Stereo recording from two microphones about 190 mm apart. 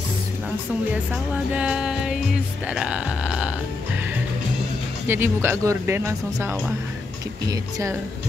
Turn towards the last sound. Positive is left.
turn(degrees=-15)  # may be behind; listen again after turning